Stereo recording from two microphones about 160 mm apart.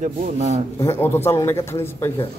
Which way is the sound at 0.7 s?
15° left (ahead or behind).